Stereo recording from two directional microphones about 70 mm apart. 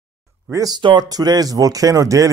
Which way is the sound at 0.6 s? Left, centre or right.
Right.